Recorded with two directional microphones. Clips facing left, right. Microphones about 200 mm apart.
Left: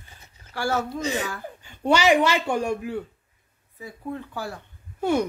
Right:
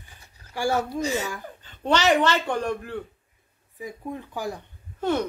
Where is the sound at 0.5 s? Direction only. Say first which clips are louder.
Right 1 dB; 15° right (ahead or behind).